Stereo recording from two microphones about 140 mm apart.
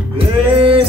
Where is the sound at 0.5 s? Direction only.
40° right (ahead or behind).